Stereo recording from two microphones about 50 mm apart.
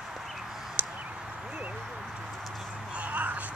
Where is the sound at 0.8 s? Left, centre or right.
Right.